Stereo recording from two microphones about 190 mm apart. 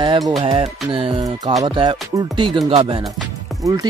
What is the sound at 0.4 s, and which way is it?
Speech, 30° right (ahead or behind).